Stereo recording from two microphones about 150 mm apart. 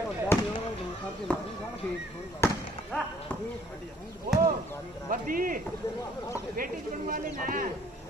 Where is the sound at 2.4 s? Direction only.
15° left (ahead or behind).